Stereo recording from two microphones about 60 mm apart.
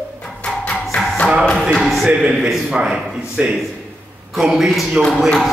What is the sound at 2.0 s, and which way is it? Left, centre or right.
A man's voice, centre.